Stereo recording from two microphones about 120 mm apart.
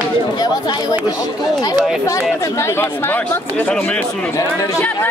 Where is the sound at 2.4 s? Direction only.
25° left (ahead or behind).